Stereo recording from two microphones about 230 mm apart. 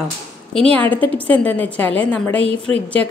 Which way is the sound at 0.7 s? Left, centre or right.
Centre.